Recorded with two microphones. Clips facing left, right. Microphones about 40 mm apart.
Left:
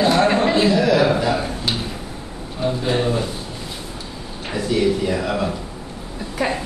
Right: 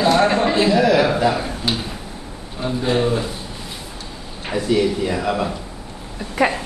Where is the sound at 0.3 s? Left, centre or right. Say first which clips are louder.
Even; centre.